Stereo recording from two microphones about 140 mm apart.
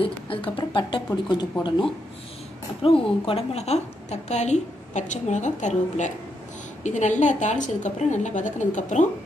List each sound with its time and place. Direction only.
0.0 s a woman's voice: 40° left (ahead or behind); by 9.0 s 60° left (ahead or behind)